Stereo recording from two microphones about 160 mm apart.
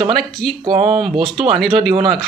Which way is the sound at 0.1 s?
Centre (ahead or behind).